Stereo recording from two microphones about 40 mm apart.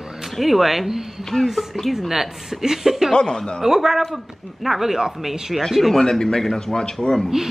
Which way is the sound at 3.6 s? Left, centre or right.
Centre.